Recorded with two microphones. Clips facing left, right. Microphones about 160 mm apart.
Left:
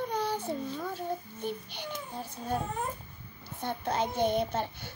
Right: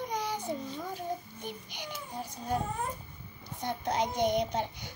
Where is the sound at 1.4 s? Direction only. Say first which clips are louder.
Left 5 dB; 15° right (ahead or behind).